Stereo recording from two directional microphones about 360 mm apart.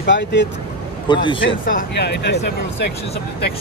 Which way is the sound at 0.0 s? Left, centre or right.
Left.